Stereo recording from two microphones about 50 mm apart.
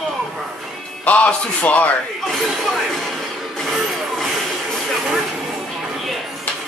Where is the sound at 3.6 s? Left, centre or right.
Centre.